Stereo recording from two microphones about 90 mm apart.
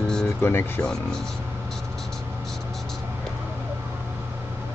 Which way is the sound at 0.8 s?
5° left (ahead or behind).